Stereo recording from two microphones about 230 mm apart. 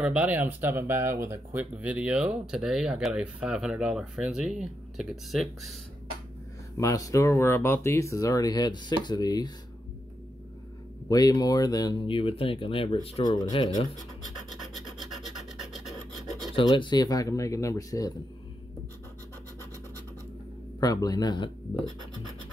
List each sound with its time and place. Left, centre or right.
0.0 s speech: centre
6.8 s speech: centre
11.1 s speech: centre
14.2 s filing: centre
16.5 s speech: left
20.8 s speech: centre